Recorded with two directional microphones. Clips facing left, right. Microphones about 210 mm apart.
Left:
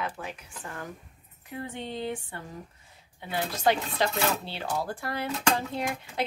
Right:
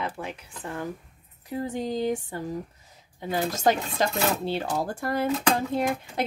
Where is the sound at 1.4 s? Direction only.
40° right (ahead or behind).